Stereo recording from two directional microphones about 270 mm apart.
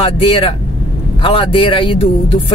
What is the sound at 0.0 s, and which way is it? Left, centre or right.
Speech, left.